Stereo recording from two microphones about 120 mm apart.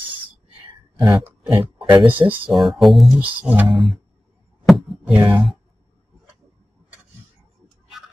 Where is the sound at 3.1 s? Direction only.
10° right (ahead or behind).